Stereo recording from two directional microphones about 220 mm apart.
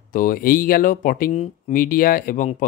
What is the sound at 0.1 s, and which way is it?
Speech, 40° left (ahead or behind).